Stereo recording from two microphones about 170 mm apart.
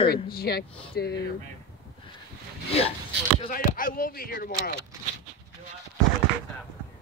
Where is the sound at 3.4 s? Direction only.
55° left (ahead or behind).